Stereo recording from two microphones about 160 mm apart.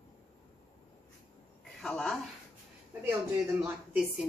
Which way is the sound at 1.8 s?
5° left (ahead or behind).